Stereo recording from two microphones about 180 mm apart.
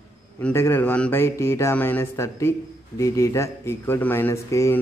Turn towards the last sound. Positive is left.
turn(degrees=15)  # may be behind; listen again after turning